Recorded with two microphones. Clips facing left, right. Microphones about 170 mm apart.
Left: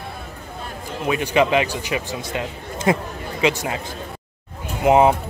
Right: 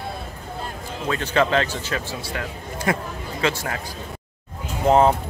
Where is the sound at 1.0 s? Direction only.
15° left (ahead or behind).